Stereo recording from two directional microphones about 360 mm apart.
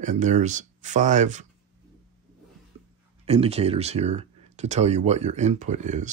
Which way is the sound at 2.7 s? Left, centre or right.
Centre.